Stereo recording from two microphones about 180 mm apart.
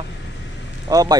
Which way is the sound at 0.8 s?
20° right (ahead or behind).